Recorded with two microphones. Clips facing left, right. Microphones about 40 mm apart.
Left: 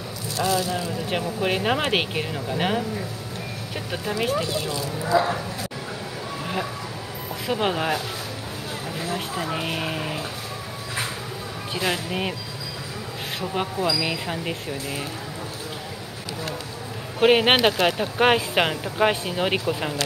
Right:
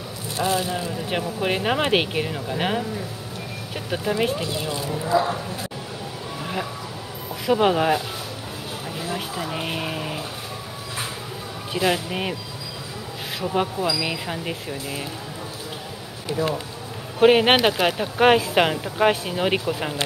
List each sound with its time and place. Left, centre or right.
0.4 s speech: right
1.1 s speech: centre
3.9 s speech: centre
4.3 s speech: right
5.0 s speech: centre
6.4 s a sound: centre
7.4 s speech: centre
9.5 s speech: centre
11.7 s speech: centre
13.4 s speech: centre
16.3 s speech: right
17.2 s speech: centre